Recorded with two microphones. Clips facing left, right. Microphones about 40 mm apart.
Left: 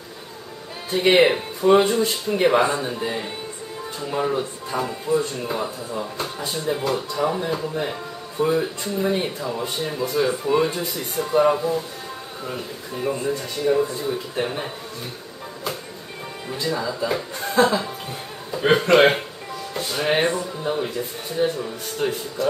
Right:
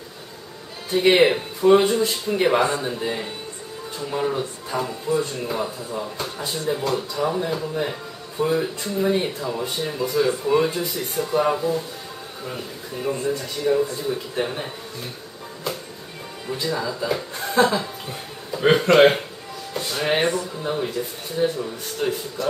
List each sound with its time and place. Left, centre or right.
0.9 s speech: centre
16.6 s speech: centre
19.7 s music: centre
20.6 s speech: centre